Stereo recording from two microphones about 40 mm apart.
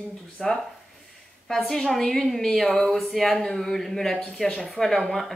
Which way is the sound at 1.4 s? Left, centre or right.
Centre.